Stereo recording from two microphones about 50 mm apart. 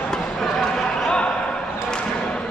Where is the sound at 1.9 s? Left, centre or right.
Left.